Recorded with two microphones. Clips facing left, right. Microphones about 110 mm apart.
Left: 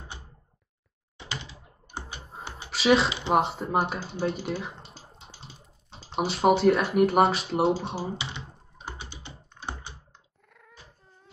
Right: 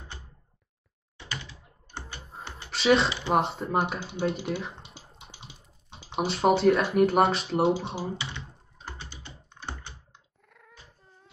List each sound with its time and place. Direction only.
1.1 s typing: 20° left (ahead or behind)
2.7 s speech: centre (ahead or behind)
3.1 s speech: 20° left (ahead or behind)
3.3 s speech: centre (ahead or behind)
4.8 s a sound: 20° right (ahead or behind)
6.1 s speech: centre (ahead or behind)
8.2 s computer keyboard: 20° left (ahead or behind)
10.6 s cat: centre (ahead or behind)